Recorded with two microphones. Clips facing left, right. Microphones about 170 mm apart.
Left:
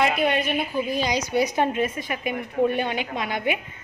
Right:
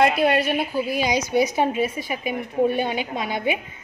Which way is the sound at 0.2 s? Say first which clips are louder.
Right 3 dB; 40° right (ahead or behind).